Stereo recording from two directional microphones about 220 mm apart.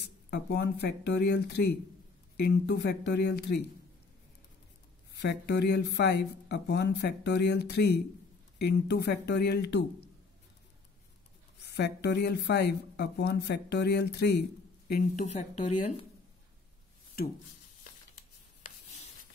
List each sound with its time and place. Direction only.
0.0 s speech: 50° left (ahead or behind)
5.2 s speech: 50° left (ahead or behind)
11.6 s speech: 50° left (ahead or behind)
14.9 s speech: 40° left (ahead or behind)